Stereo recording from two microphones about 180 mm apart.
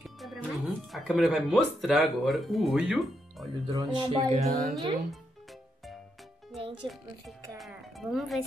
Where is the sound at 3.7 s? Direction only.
20° right (ahead or behind).